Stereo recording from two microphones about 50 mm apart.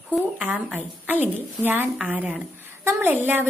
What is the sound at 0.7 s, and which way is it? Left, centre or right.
A woman's voice, right.